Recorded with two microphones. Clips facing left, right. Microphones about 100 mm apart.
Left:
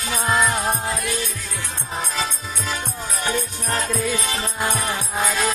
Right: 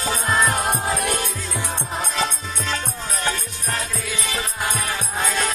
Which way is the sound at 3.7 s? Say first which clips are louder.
Left 4 dB; 35° left (ahead or behind).